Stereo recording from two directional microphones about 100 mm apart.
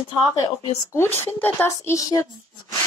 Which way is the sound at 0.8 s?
25° left (ahead or behind).